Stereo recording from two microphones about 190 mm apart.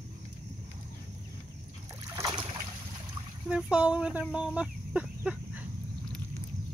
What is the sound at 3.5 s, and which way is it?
Speech, 5° right (ahead or behind).